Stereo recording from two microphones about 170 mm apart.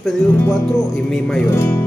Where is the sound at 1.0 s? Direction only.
5° left (ahead or behind).